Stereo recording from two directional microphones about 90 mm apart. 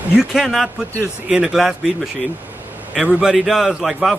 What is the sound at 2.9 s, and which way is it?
A man's voice, 5° right (ahead or behind).